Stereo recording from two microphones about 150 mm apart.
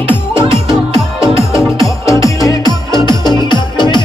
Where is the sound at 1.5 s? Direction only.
20° left (ahead or behind).